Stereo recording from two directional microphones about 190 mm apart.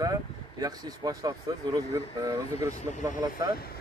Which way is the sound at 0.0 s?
20° right (ahead or behind).